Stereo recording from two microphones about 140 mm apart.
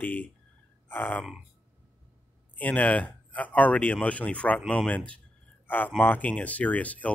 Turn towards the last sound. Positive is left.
turn(degrees=10)  # may be behind; listen again after turning